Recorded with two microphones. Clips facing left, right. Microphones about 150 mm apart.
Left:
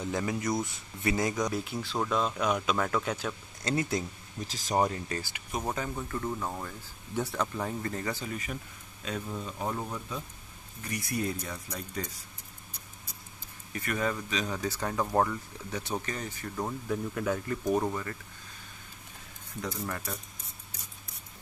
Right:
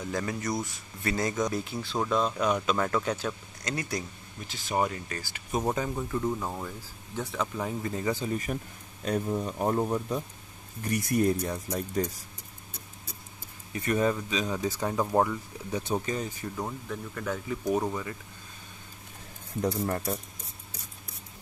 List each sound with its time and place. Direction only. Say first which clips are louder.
0.0 s speech: left 1 dB; 20° left (ahead or behind)
1.5 s speech: right 1 dB; 5° left (ahead or behind)
3.6 s speech: left 3 dB; 25° left (ahead or behind)
4.5 s speech: left 1 dB; 40° left (ahead or behind)
5.5 s speech: right 5 dB; 20° right (ahead or behind); by 7.7 s centre (ahead or behind)
7.8 s speech: right 4 dB; 15° right (ahead or behind)
8.3 s speech: right 6 dB; 45° right (ahead or behind)
13.7 s speech: right 5 dB; 25° right (ahead or behind)
14.6 s speech: right 3 dB; 15° right (ahead or behind)
16.9 s speech: left 6 dB; 5° left (ahead or behind)
19.6 s speech: right 7 dB; 35° right (ahead or behind)